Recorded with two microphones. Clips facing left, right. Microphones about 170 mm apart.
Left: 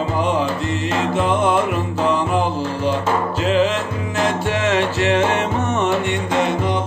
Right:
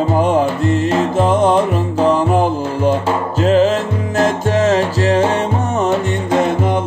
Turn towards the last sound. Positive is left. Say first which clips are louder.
# right 2 dB
turn(degrees=-35)  # may be behind; listen again after turning